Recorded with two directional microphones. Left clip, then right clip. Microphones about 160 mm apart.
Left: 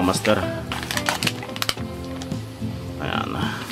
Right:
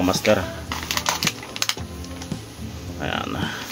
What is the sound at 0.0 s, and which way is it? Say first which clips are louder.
Speech: right 1 dB; 10° left (ahead or behind).